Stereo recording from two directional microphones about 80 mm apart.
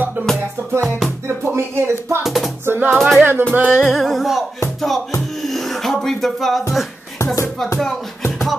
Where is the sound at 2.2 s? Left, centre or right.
Centre.